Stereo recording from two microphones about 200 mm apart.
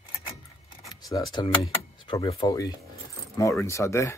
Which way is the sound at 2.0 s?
15° left (ahead or behind).